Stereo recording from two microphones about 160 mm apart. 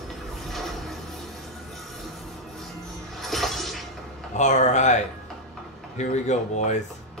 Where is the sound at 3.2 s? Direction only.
Centre (ahead or behind).